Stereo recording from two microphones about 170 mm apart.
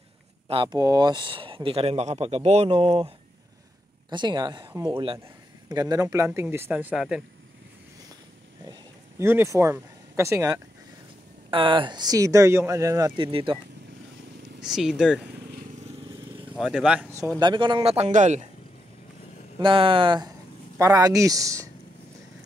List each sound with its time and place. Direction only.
0.5 s speech: 25° right (ahead or behind)
4.1 s speech: 25° right (ahead or behind); by 7.2 s 5° right (ahead or behind)
9.2 s speech: 15° right (ahead or behind)
11.5 s speech: 30° right (ahead or behind)
14.6 s speech: 5° right (ahead or behind)
16.5 s speech: 5° right (ahead or behind)
17.4 s speech: 30° right (ahead or behind); by 18.5 s 45° right (ahead or behind)
19.6 s speech: 30° right (ahead or behind)